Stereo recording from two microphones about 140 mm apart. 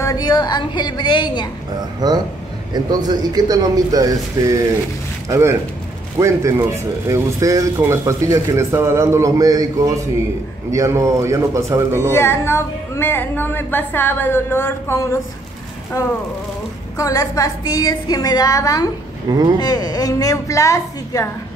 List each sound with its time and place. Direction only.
0.0 s a woman's voice: 25° left (ahead or behind)
2.0 s speech: 30° right (ahead or behind)
12.1 s a woman's voice: 20° left (ahead or behind)
19.3 s speech: 30° right (ahead or behind)
19.6 s a woman's voice: 30° left (ahead or behind)